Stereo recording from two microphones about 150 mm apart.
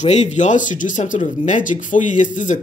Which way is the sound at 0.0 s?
50° left (ahead or behind).